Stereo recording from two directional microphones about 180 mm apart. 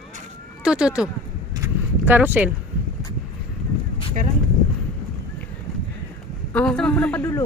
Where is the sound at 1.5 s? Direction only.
15° right (ahead or behind).